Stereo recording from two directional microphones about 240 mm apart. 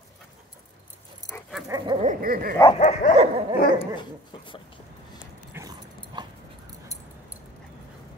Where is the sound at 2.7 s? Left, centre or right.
Left.